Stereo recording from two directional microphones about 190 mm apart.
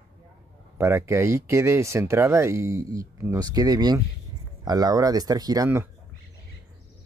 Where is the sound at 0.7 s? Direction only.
15° right (ahead or behind).